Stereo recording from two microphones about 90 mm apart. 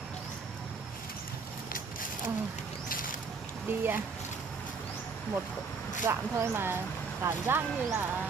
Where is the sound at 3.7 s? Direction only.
25° right (ahead or behind).